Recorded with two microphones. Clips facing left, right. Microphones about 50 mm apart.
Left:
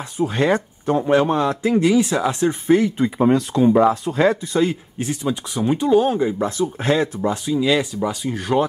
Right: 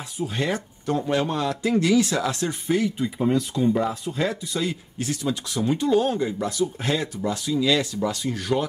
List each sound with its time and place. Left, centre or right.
0.2 s speech: left
0.8 s speech: left
2.6 s speech: left
3.0 s speech: left
4.3 s speech: left